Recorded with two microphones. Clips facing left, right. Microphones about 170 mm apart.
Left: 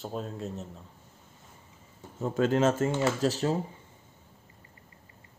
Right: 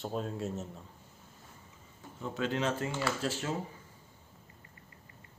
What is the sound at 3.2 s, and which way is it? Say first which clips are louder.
Speech: left 8 dB; 35° left (ahead or behind).